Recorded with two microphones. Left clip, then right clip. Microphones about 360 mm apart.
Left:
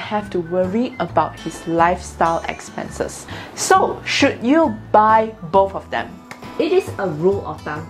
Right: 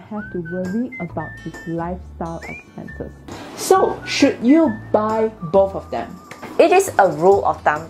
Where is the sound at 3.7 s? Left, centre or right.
Left.